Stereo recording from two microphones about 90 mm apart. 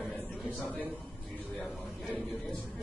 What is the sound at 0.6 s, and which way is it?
Speech, 15° left (ahead or behind).